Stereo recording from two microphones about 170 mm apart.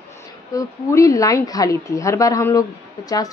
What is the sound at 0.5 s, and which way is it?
A woman's voice, 20° left (ahead or behind).